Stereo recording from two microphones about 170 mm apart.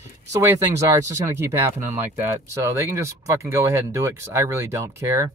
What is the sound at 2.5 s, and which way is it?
Speech, 15° right (ahead or behind).